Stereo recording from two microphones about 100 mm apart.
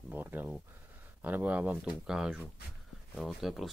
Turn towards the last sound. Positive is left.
turn(degrees=0)  # may be behind; listen again after turning